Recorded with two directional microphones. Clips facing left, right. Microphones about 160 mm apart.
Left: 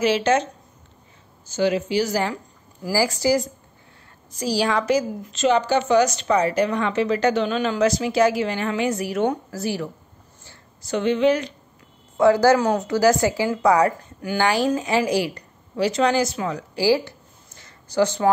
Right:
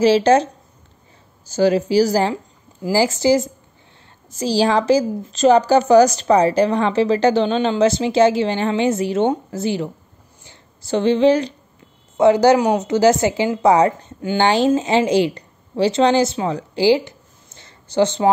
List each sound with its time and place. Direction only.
0.0 s a woman's voice: 35° right (ahead or behind)
10.4 s a sound: 25° right (ahead or behind)
12.2 s a woman's voice: 20° right (ahead or behind)